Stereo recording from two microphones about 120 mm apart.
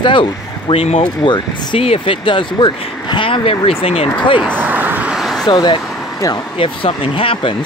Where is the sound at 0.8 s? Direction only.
55° left (ahead or behind).